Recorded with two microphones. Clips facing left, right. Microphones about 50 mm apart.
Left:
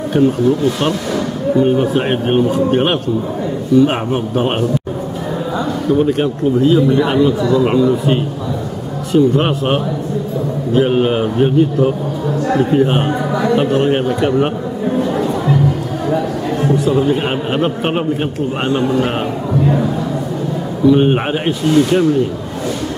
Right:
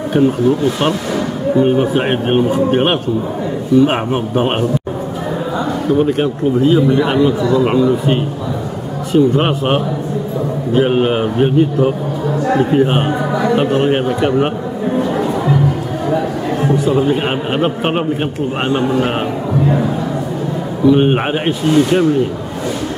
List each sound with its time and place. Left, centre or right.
1.5 s a man's voice: centre
5.9 s a man's voice: centre
15.0 s chatter: centre
16.9 s a man's voice: centre
20.8 s a man's voice: centre